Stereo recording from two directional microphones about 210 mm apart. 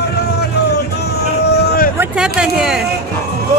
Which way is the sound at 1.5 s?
45° left (ahead or behind).